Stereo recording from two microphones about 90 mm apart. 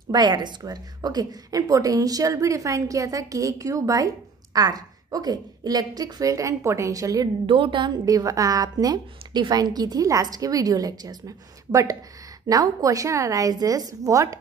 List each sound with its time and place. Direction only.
0.1 s a woman's voice: 50° right (ahead or behind)
7.4 s a woman's voice: 70° right (ahead or behind)
8.0 s a woman's voice: 40° right (ahead or behind)